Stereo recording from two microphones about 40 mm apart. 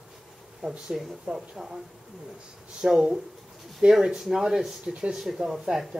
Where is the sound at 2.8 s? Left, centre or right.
Right.